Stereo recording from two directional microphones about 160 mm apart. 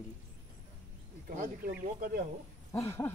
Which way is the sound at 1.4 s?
60° right (ahead or behind).